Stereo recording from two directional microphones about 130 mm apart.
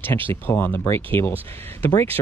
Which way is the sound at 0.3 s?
15° left (ahead or behind).